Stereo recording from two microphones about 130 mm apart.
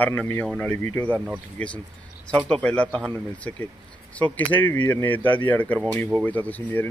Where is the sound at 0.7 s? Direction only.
15° left (ahead or behind).